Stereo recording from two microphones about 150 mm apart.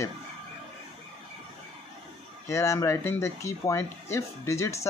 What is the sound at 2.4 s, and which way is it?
Speech, 20° left (ahead or behind).